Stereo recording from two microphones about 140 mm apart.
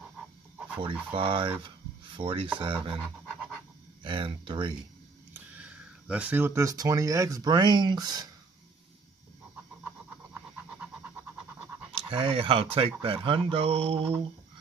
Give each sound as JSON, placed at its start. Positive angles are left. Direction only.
{"t": 0.7, "sound": "speech", "side_deg": -40}
{"t": 4.0, "sound": "speech", "side_deg": -35}
{"t": 5.3, "sound": "speech", "side_deg": -10}
{"t": 11.9, "sound": "speech", "side_deg": -40}